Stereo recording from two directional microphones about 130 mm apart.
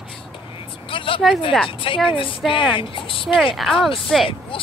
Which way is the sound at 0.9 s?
40° left (ahead or behind).